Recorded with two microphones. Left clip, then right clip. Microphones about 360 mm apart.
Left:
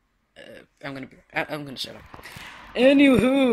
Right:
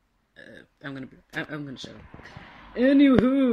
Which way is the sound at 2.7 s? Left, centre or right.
Left.